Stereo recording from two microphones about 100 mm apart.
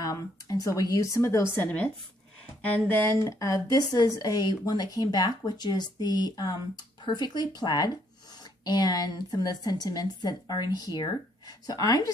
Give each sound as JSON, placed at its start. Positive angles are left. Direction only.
{"t": 0.0, "sound": "a woman's voice", "side_deg": 35}